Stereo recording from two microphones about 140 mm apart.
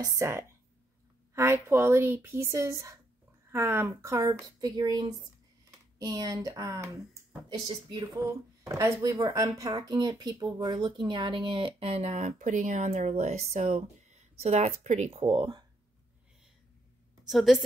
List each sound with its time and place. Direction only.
0.0 s a woman's voice: 25° right (ahead or behind); by 15.0 s 55° right (ahead or behind)
15.0 s speech: 40° right (ahead or behind)
17.3 s a woman's voice: centre (ahead or behind)